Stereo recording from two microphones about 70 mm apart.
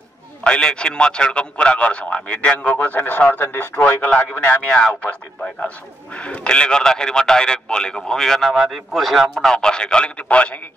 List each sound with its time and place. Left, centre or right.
0.4 s a man's voice: centre
6.1 s a man's voice: centre